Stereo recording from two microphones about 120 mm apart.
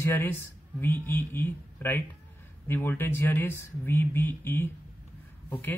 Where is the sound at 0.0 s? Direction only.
20° left (ahead or behind).